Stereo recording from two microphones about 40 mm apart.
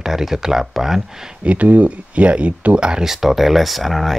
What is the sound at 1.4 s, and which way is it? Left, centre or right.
Speech, right.